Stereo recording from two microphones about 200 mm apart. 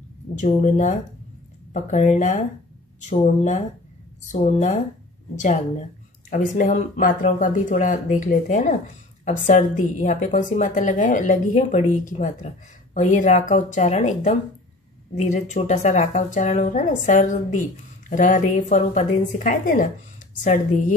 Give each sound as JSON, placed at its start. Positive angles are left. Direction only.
{"t": 0.4, "sound": "a woman's voice", "side_deg": 40}